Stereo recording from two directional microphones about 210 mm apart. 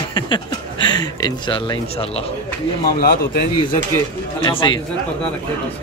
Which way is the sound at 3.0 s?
45° left (ahead or behind).